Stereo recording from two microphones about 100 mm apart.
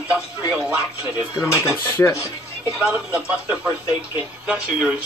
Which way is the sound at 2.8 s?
15° right (ahead or behind).